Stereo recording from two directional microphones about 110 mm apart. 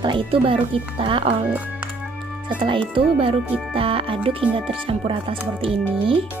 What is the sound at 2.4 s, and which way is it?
Speech, 50° right (ahead or behind).